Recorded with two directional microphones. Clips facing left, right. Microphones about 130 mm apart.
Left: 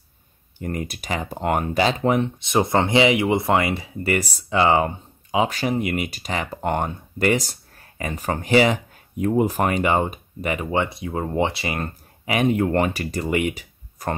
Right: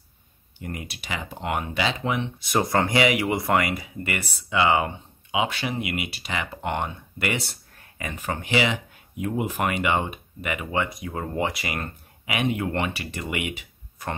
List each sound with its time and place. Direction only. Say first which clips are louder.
0.6 s speech: left 7 dB; 45° left (ahead or behind)
2.3 s speech: left 3 dB; 25° left (ahead or behind); by 14.1 s 40° left (ahead or behind)